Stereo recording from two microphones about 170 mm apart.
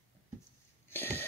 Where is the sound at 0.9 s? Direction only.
10° left (ahead or behind).